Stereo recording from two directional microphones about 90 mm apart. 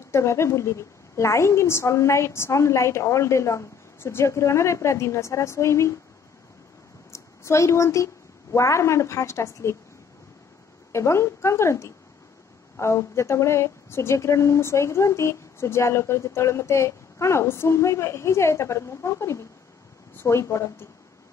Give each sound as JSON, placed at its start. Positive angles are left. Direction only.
{"t": 0.1, "sound": "speech", "side_deg": 30}
{"t": 7.1, "sound": "a woman's voice", "side_deg": 35}
{"t": 10.9, "sound": "speech", "side_deg": 30}